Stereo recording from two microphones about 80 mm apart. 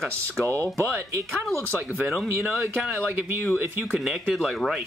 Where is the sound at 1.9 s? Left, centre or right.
Centre.